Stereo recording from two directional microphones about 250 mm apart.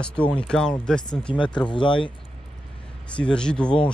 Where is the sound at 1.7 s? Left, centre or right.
Centre.